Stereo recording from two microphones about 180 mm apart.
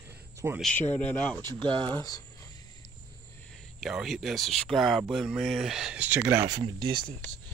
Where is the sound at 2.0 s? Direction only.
20° left (ahead or behind).